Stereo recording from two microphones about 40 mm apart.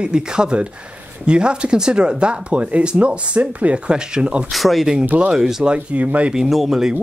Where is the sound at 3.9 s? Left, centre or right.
Right.